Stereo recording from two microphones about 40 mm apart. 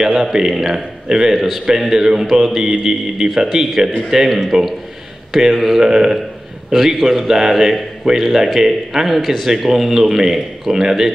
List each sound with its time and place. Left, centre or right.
0.0 s a man's voice: centre
1.3 s a man's voice: centre